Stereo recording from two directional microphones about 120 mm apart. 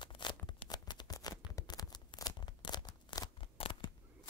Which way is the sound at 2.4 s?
40° left (ahead or behind).